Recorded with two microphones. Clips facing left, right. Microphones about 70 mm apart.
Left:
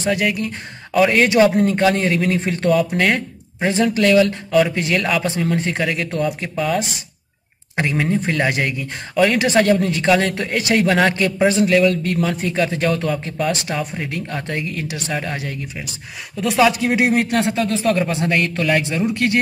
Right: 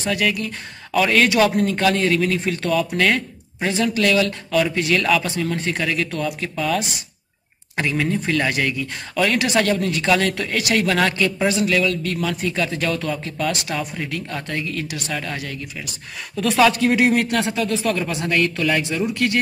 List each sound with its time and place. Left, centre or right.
0.0 s speech: left
16.4 s speech: centre